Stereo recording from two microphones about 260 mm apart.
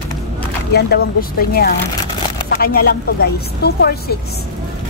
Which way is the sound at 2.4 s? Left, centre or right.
Left.